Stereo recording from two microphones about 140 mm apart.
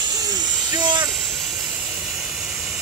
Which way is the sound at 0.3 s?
30° right (ahead or behind).